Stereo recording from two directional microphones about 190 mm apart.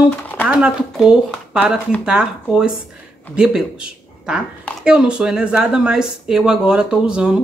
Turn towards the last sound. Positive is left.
turn(degrees=-5)  # may be behind; listen again after turning